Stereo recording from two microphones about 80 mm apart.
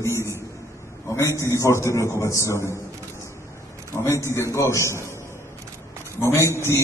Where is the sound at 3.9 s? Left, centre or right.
Left.